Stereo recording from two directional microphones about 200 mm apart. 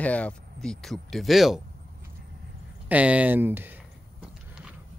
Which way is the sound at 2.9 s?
5° right (ahead or behind).